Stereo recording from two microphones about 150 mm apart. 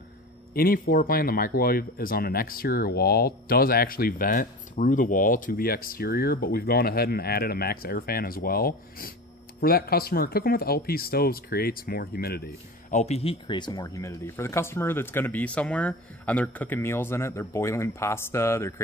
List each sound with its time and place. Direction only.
0.6 s speech: 75° left (ahead or behind)
9.6 s speech: 90° left
12.9 s speech: 45° left (ahead or behind); by 18.8 s 15° left (ahead or behind)